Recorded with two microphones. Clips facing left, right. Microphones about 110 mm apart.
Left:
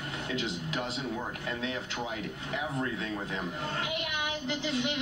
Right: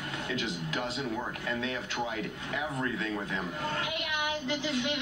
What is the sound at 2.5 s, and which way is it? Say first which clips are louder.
Speech: even; 30° left (ahead or behind).